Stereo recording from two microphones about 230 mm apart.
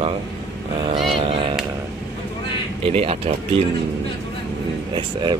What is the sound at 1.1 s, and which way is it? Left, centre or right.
Speech, right.